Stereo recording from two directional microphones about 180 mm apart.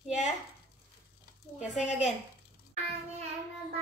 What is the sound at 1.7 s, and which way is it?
Speech, 40° left (ahead or behind).